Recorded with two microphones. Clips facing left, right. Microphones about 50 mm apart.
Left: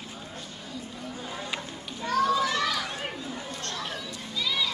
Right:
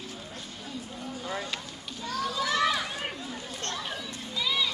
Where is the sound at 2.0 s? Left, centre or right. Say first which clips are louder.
Left 7 dB; left.